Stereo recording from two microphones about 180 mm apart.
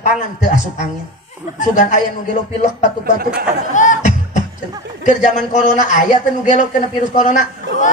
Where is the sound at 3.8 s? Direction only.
45° left (ahead or behind).